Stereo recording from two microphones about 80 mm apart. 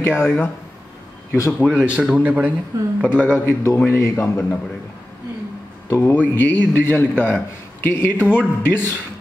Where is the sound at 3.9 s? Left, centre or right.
Left.